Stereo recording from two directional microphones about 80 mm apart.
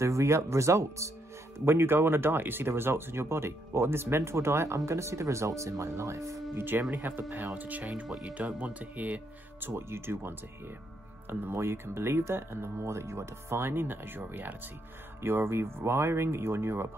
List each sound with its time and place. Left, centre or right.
0.0 s speech: right
6.5 s speech: right